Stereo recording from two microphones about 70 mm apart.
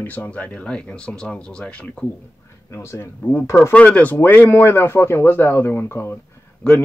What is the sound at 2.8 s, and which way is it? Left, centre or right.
Speech, left.